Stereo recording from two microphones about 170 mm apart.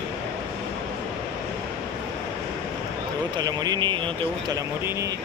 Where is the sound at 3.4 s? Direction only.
25° right (ahead or behind).